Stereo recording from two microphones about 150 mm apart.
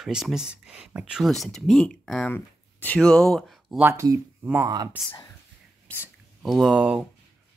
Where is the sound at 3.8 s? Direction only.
20° right (ahead or behind).